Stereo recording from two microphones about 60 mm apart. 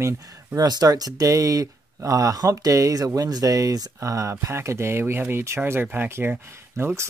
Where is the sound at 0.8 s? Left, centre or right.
Right.